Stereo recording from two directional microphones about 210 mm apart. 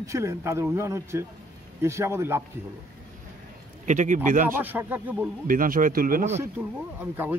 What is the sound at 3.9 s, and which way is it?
Speech, 35° right (ahead or behind).